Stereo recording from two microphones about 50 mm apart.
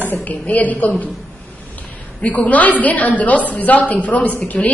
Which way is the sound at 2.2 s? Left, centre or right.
Left.